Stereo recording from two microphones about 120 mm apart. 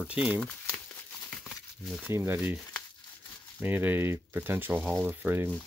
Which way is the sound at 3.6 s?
15° right (ahead or behind).